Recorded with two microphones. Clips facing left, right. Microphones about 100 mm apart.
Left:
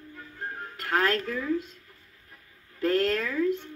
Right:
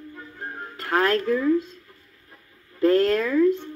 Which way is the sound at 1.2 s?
10° right (ahead or behind).